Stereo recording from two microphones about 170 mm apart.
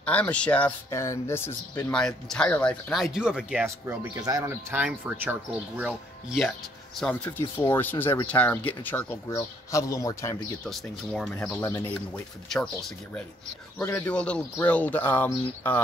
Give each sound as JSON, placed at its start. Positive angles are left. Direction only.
{"t": 0.0, "sound": "speech", "side_deg": 10}
{"t": 3.6, "sound": "speech", "side_deg": -15}
{"t": 4.7, "sound": "speech", "side_deg": -10}
{"t": 7.0, "sound": "a man's voice", "side_deg": 5}
{"t": 10.6, "sound": "speech", "side_deg": 5}
{"t": 13.8, "sound": "speech", "side_deg": 10}